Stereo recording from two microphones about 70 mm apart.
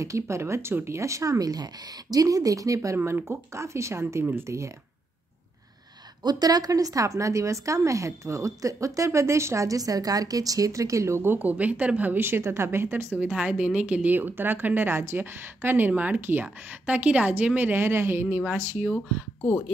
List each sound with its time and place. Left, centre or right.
0.0 s speech: right
3.0 s speech: right
6.2 s speech: right
11.3 s a woman's voice: right
13.3 s a woman's voice: centre; by 18.9 s right